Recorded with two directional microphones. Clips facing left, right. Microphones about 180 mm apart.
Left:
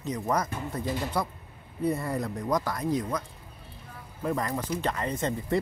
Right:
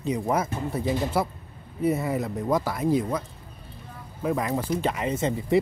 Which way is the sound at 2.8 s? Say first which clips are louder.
Right 5 dB; 25° right (ahead or behind).